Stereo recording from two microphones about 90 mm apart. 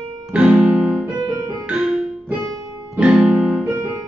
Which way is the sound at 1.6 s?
10° right (ahead or behind).